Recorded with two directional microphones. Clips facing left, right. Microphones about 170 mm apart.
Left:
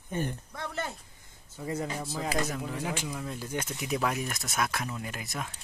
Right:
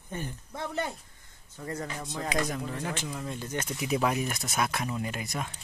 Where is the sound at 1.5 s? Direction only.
10° left (ahead or behind).